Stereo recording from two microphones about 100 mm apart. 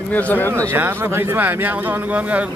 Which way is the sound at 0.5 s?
30° right (ahead or behind).